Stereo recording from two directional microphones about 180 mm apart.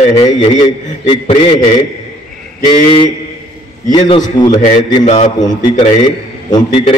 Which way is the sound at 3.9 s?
25° left (ahead or behind).